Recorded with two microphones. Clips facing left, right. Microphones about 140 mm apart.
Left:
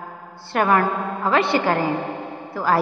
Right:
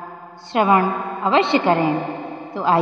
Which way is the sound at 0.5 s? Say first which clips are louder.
Right 2 dB; 20° right (ahead or behind).